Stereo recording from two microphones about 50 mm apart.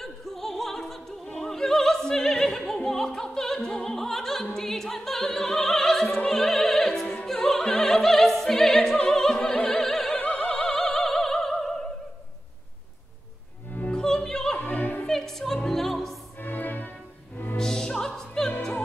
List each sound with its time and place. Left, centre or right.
0.0 s opera: centre
10.1 s opera: centre
10.5 s opera: centre
13.9 s opera: centre
14.6 s opera: left
15.0 s music: centre
16.3 s music: left
17.6 s opera: centre